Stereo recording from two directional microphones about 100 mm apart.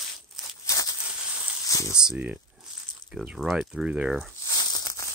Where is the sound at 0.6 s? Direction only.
35° left (ahead or behind).